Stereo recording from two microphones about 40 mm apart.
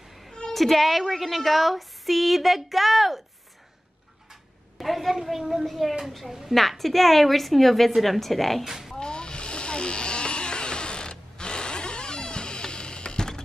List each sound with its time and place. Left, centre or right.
0.5 s a woman's voice: centre
4.3 s a sound: centre
5.1 s a woman's voice: centre
8.6 s speech: centre
8.9 s snoring: left